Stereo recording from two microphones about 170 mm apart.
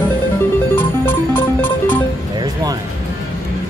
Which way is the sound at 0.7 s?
10° left (ahead or behind).